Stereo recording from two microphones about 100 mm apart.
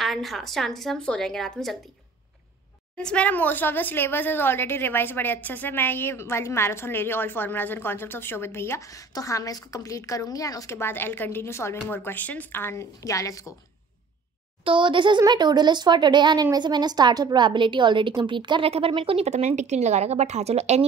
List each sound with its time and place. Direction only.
0.0 s speech: centre (ahead or behind)
3.0 s a woman's voice: 10° left (ahead or behind); by 13.6 s 35° left (ahead or behind)
14.6 s a woman's voice: 60° right (ahead or behind)
18.7 s speech: 70° right (ahead or behind); by 20.8 s 90° right